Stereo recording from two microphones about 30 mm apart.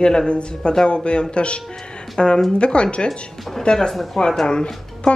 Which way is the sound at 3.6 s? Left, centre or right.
Left.